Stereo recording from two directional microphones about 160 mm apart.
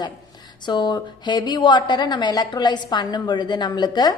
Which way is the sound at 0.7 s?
25° left (ahead or behind).